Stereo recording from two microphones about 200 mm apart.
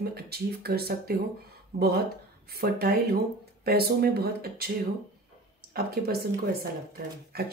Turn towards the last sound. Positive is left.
turn(degrees=-50)  # may be behind; listen again after turning